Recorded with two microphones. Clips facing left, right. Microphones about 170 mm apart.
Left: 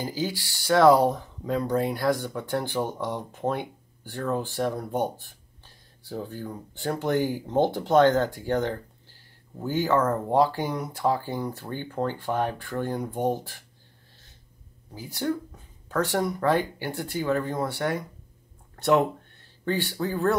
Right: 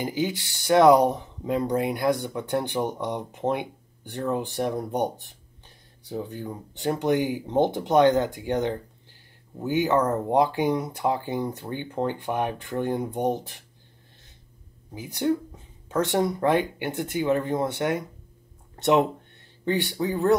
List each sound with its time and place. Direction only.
0.0 s speech: 20° right (ahead or behind)
15.0 s speech: 20° right (ahead or behind)